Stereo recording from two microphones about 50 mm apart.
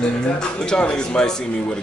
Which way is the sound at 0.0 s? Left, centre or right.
Centre.